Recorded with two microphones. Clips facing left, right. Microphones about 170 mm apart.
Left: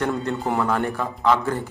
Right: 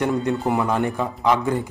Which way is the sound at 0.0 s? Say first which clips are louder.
Right 3 dB; 15° right (ahead or behind).